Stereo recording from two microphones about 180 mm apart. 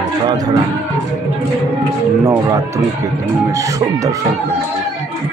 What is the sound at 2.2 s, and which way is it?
Speech, 15° right (ahead or behind).